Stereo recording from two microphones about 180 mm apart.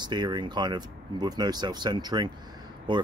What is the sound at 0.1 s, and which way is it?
Speech, 25° right (ahead or behind).